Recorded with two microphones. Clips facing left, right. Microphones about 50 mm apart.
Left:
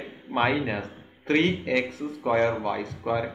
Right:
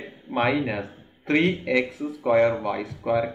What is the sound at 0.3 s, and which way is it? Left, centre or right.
Speech, centre.